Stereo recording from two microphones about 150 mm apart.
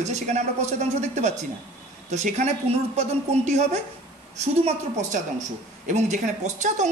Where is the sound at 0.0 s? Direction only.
50° right (ahead or behind).